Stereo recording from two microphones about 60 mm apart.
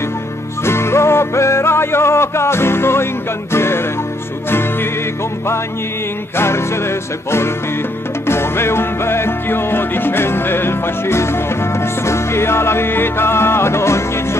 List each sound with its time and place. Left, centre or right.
0.7 s music: left
6.3 s music: left